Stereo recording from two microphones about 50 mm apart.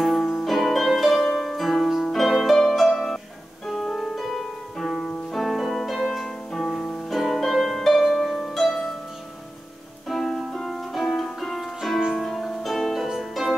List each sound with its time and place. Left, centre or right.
0.0 s music: centre
2.0 s harp: centre
2.9 s music: centre
6.8 s music: centre
7.1 s harp: centre
10.0 s music: centre